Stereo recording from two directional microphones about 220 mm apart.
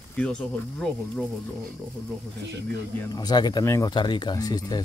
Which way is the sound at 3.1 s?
20° left (ahead or behind).